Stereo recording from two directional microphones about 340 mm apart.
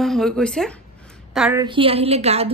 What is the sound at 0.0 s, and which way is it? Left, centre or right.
A woman's voice, centre.